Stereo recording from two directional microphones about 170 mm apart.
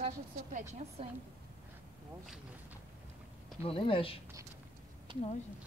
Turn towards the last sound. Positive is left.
turn(degrees=30)  # may be behind; listen again after turning